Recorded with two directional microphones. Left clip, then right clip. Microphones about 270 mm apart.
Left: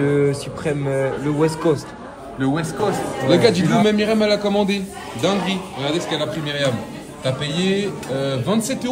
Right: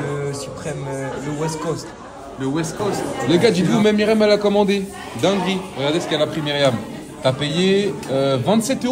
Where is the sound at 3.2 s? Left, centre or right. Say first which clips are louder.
Left 1 dB; centre.